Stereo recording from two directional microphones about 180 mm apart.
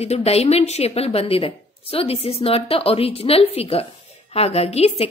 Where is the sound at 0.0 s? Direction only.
35° left (ahead or behind).